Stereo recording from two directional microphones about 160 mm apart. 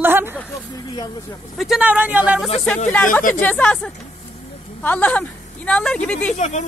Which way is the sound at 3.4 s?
10° left (ahead or behind).